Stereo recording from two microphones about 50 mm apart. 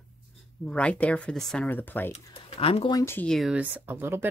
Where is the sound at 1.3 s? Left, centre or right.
Centre.